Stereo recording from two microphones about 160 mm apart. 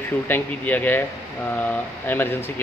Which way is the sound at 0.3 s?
10° left (ahead or behind).